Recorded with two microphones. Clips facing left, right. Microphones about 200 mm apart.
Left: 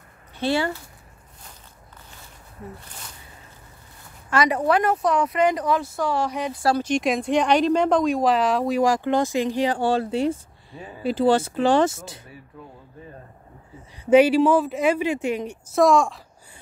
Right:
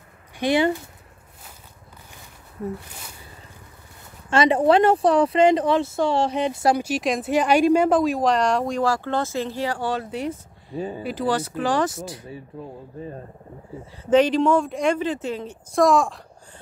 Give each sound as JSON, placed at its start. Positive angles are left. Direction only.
{"t": 0.4, "sound": "speech", "side_deg": -20}
{"t": 4.3, "sound": "speech", "side_deg": -25}
{"t": 6.8, "sound": "speech", "side_deg": -5}
{"t": 8.8, "sound": "speech", "side_deg": 15}
{"t": 12.5, "sound": "speech", "side_deg": -30}
{"t": 14.1, "sound": "speech", "side_deg": 10}
{"t": 15.7, "sound": "speech", "side_deg": 0}